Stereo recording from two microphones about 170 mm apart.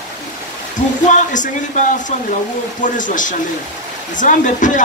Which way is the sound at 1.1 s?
45° left (ahead or behind).